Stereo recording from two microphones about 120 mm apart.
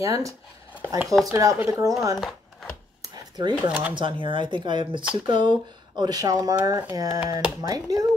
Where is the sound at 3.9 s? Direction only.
45° right (ahead or behind).